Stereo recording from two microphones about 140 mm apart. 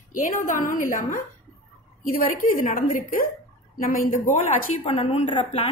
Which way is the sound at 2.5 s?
75° left (ahead or behind).